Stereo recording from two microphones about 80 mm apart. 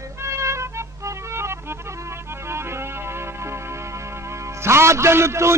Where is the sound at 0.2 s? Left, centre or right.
Right.